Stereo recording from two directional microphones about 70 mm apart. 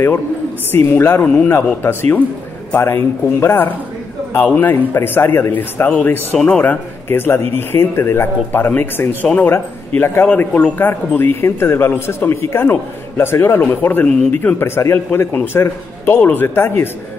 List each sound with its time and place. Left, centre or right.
0.7 s a man's voice: left
5.9 s a man's voice: centre
14.8 s a man's voice: left